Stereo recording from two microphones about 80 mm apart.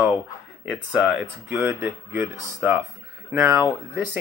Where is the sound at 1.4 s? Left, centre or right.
Right.